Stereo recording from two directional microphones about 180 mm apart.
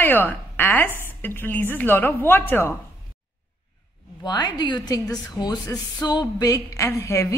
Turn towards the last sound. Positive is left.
turn(degrees=15)  # may be behind; listen again after turning